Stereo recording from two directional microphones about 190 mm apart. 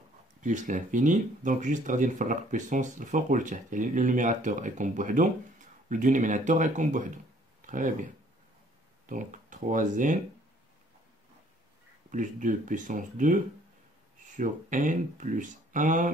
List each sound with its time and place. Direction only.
0.4 s speech: 40° right (ahead or behind)
12.1 s speech: 40° right (ahead or behind)